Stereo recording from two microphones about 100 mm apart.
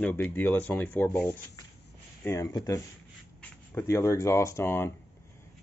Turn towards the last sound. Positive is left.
turn(degrees=25)  # may be behind; listen again after turning